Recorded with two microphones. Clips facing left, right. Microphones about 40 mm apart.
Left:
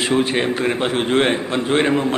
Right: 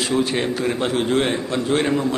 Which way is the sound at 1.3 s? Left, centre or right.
Left.